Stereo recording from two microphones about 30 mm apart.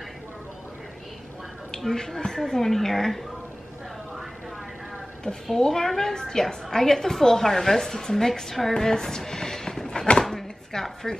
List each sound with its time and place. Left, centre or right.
2.0 s a woman's voice: centre
5.2 s a woman's voice: centre
8.7 s a sound: centre